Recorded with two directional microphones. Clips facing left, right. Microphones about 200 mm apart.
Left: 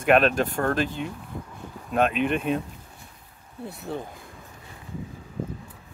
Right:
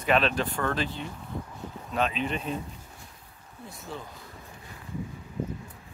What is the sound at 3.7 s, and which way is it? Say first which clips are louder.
Speech: left 6 dB; 60° left (ahead or behind).